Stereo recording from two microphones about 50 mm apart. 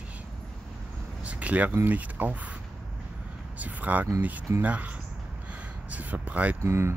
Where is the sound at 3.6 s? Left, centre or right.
Right.